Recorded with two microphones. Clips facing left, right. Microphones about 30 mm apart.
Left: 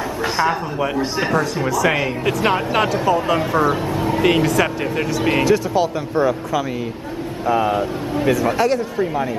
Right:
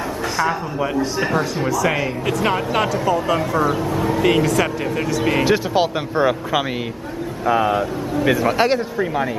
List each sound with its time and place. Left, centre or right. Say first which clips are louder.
0.5 s speech: left 1 dB; centre
3.8 s speech: even; left
4.2 s speech: left 1 dB; centre
5.4 s speech: left 1 dB; right
7.4 s speech: right 1 dB; centre
8.3 s speech: even; right
8.9 s speech: even; centre